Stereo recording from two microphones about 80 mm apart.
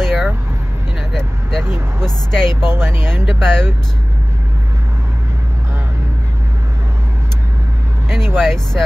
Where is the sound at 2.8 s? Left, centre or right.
Right.